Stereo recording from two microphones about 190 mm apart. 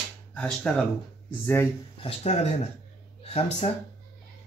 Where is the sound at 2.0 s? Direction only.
35° left (ahead or behind).